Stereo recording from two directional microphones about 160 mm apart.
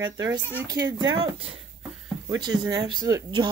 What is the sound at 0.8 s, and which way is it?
Speech, 35° right (ahead or behind).